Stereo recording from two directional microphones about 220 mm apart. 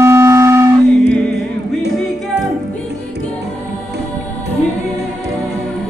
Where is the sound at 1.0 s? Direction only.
5° left (ahead or behind).